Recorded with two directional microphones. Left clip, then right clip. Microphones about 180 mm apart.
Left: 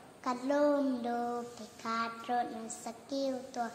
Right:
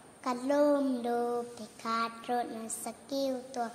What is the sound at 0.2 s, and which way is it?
A woman's voice, 30° right (ahead or behind).